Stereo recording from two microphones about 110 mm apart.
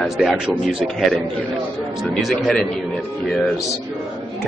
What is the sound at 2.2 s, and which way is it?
Speech, centre (ahead or behind).